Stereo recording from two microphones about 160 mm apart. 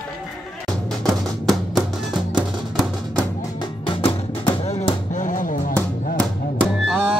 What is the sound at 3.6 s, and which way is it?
Music, 35° left (ahead or behind).